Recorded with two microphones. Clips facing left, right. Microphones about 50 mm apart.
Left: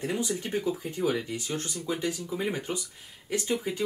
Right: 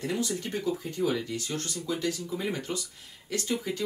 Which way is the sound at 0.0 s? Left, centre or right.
Left.